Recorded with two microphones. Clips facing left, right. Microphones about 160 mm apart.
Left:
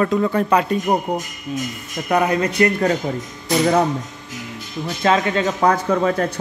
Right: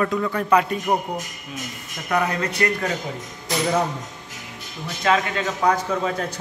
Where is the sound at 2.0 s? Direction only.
20° left (ahead or behind).